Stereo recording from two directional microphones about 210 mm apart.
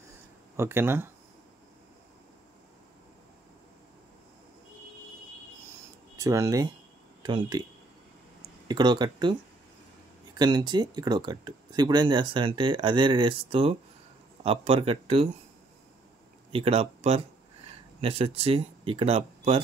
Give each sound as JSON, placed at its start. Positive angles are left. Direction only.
{"t": 0.6, "sound": "speech", "side_deg": -10}
{"t": 6.1, "sound": "speech", "side_deg": -15}
{"t": 8.6, "sound": "speech", "side_deg": -20}
{"t": 16.5, "sound": "speech", "side_deg": -25}